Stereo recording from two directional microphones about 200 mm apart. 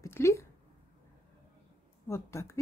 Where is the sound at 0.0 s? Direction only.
15° left (ahead or behind).